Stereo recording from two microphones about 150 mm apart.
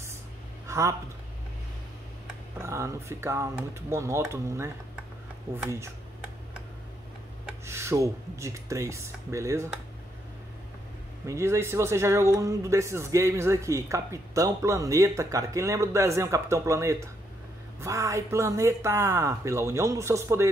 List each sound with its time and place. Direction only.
0.7 s a sound: 20° right (ahead or behind)
2.6 s speech: 15° right (ahead or behind)
7.6 s speech: 20° right (ahead or behind)
11.2 s speech: 20° right (ahead or behind)